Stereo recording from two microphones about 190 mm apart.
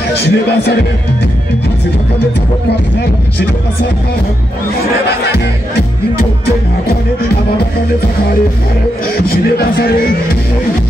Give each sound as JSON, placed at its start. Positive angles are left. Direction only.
{"t": 0.1, "sound": "speech", "side_deg": 60}
{"t": 9.3, "sound": "speech", "side_deg": 55}